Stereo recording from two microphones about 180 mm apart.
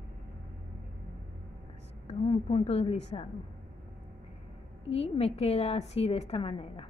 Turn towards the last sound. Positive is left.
turn(degrees=35)  # may be behind; listen again after turning